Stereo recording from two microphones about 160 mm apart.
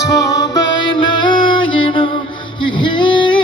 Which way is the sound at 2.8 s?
30° left (ahead or behind).